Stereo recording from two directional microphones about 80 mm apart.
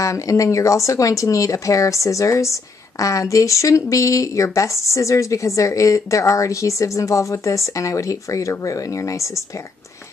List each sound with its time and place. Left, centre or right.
0.0 s speech: left